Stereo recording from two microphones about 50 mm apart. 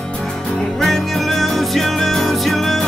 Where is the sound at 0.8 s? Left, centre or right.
Centre.